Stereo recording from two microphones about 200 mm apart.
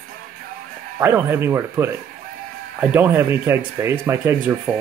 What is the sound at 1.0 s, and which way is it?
Speech, 10° right (ahead or behind).